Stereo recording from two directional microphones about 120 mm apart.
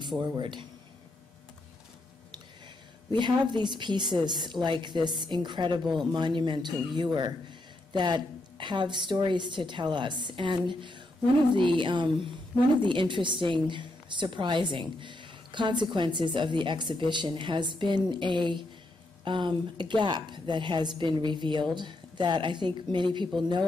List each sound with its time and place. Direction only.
0.0 s a man's voice: 40° right (ahead or behind)
3.1 s a woman's voice: 40° right (ahead or behind)